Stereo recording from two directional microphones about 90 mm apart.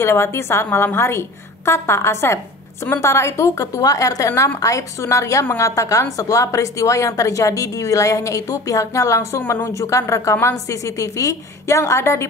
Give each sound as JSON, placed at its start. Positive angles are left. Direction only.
{"t": 0.0, "sound": "a woman's voice", "side_deg": 30}
{"t": 4.3, "sound": "a woman's voice", "side_deg": 25}
{"t": 4.6, "sound": "a woman's voice", "side_deg": 35}